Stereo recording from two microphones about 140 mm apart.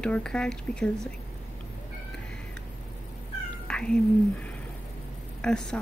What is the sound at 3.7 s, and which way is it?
Cat, 5° left (ahead or behind).